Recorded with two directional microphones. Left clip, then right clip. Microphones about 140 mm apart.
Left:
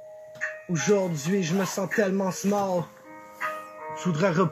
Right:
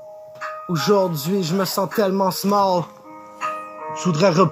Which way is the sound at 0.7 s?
60° right (ahead or behind).